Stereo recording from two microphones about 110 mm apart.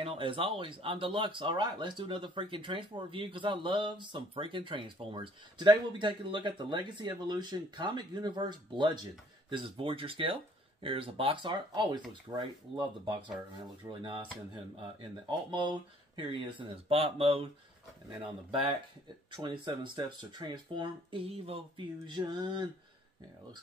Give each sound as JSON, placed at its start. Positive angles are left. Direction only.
{"t": 0.0, "sound": "speech", "side_deg": -55}
{"t": 14.8, "sound": "speech", "side_deg": -50}
{"t": 22.0, "sound": "speech", "side_deg": -40}